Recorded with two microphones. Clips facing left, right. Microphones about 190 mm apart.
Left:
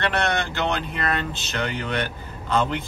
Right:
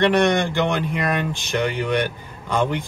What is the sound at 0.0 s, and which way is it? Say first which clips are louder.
Speech: right 7 dB; 15° right (ahead or behind).